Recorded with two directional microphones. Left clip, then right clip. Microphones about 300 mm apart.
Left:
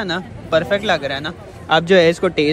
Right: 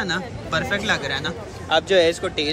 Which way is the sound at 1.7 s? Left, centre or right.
Left.